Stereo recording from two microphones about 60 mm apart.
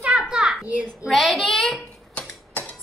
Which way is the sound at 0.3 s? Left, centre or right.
Centre.